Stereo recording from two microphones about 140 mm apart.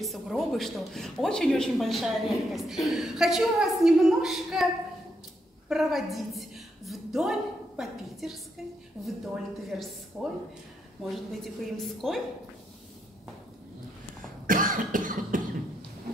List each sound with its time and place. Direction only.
0.0 s a man's voice: centre (ahead or behind)
5.7 s a woman's voice: centre (ahead or behind)
14.4 s cough: 80° right